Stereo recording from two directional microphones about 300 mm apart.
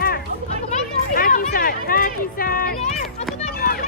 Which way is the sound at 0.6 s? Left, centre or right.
Left.